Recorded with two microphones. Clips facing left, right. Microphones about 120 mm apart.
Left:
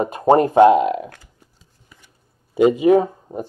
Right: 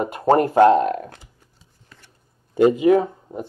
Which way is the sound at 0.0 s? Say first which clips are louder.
Left 2 dB; 20° left (ahead or behind).